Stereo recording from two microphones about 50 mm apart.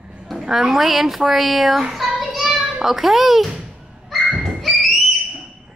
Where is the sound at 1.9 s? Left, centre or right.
Centre.